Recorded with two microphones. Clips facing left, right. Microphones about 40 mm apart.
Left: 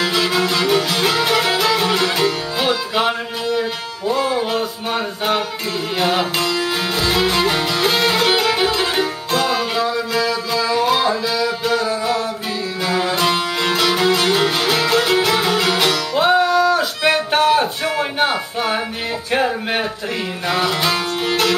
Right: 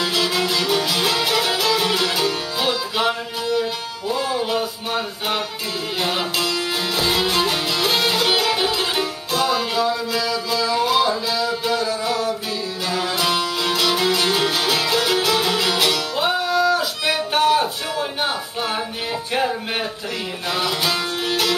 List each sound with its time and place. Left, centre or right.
0.2 s music: left
10.8 s music: centre
11.7 s music: left
19.3 s music: centre
21.2 s music: centre